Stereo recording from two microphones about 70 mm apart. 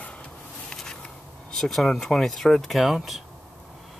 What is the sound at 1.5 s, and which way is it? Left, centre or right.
Speech, centre.